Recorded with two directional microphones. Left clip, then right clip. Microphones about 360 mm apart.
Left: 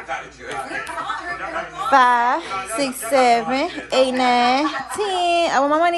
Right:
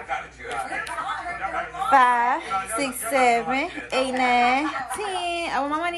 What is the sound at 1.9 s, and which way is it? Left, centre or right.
A woman's voice, centre.